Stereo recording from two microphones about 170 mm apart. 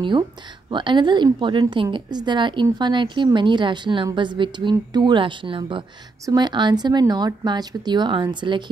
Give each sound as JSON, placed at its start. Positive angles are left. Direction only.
{"t": 0.7, "sound": "a woman's voice", "side_deg": -25}